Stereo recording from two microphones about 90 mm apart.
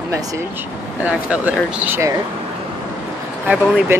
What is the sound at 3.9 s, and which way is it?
Speech, 30° right (ahead or behind).